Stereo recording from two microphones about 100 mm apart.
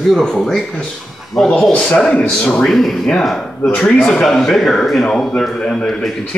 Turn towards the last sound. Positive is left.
turn(degrees=10)  # may be behind; listen again after turning